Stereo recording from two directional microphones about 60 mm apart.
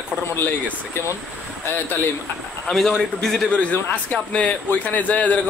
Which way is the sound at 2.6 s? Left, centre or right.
Centre.